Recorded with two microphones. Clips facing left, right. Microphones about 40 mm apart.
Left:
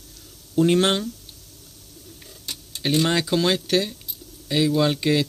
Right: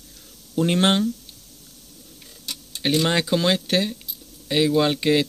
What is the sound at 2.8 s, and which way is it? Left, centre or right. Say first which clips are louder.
Speech: right 1 dB; right.